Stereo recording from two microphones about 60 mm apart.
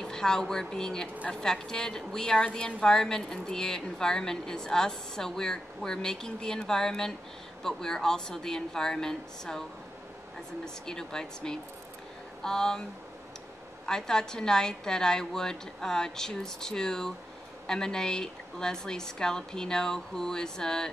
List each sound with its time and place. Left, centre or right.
0.0 s a woman's voice: centre
10.6 s a woman's voice: centre
13.8 s a woman's voice: centre